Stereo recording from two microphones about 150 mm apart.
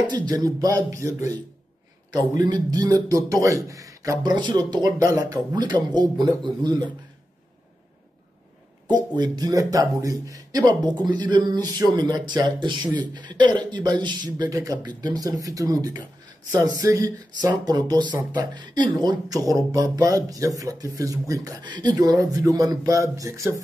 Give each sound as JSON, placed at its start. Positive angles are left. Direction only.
{"t": 0.1, "sound": "a man's voice", "side_deg": -25}
{"t": 8.9, "sound": "a man's voice", "side_deg": -30}